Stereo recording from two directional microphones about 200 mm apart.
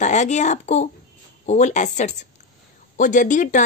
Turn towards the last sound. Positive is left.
turn(degrees=40)  # may be behind; listen again after turning